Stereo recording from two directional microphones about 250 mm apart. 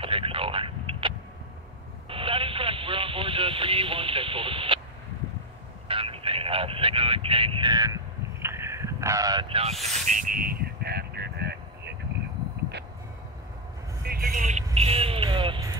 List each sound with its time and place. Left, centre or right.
0.0 s a sound: right
2.0 s radio: right
5.9 s vehicle: right
14.0 s vehicle: right; by 15.8 s centre